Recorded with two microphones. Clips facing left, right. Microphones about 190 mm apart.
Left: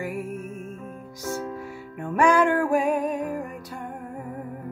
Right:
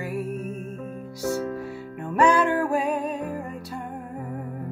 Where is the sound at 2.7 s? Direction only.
15° left (ahead or behind).